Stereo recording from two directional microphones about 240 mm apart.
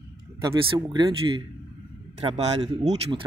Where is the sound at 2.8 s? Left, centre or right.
Right.